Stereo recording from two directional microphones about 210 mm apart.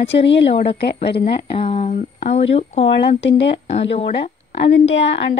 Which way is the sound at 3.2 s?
55° left (ahead or behind).